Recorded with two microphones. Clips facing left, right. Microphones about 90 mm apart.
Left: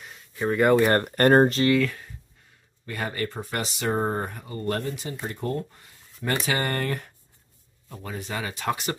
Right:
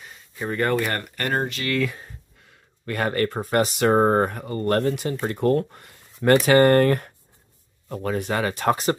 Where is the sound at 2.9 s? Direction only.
60° right (ahead or behind).